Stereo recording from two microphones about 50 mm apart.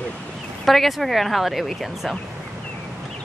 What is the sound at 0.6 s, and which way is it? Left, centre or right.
Speech, centre.